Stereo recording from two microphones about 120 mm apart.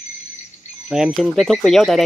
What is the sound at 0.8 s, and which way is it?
Speech, 5° right (ahead or behind).